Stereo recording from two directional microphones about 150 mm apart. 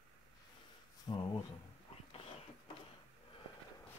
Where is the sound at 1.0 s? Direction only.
25° left (ahead or behind).